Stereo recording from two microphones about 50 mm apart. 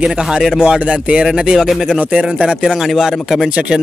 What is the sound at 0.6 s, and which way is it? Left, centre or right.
Speech, right.